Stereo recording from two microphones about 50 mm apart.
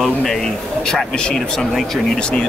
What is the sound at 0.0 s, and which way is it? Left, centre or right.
Speech, centre.